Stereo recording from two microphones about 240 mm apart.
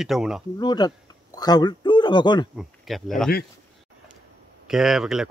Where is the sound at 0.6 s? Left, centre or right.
Centre.